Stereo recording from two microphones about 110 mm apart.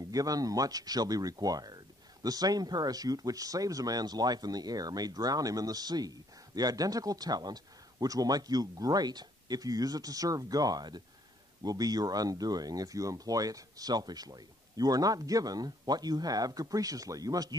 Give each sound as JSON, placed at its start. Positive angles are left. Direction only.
{"t": 0.0, "sound": "speech", "side_deg": -35}